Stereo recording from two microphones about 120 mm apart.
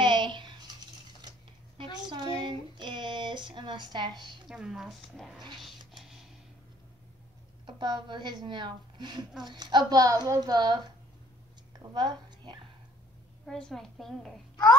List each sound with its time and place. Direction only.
0.0 s bathtub: 40° right (ahead or behind)
1.2 s mechanisms: 35° right (ahead or behind)
1.8 s a sound: 40° right (ahead or behind)
4.5 s a child's voice: 5° right (ahead or behind)
5.6 s a sound: centre (ahead or behind)
7.6 s a woman's voice: 40° right (ahead or behind)
11.8 s a woman's voice: 35° right (ahead or behind)
13.5 s a child's voice: 5° left (ahead or behind)